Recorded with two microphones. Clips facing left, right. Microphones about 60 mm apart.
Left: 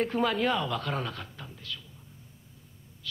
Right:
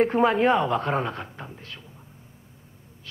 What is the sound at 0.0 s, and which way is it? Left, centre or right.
Speech, right.